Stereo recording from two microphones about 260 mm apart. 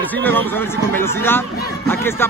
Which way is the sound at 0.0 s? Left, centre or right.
Centre.